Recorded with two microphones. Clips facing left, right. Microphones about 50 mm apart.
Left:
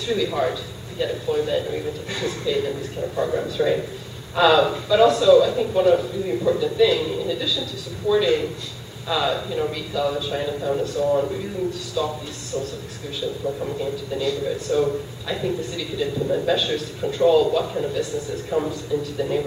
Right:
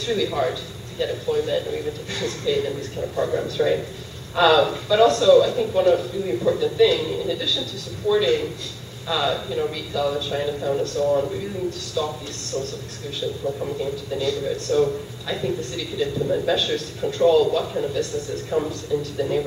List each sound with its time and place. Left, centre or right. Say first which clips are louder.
0.0 s a man's voice: even; centre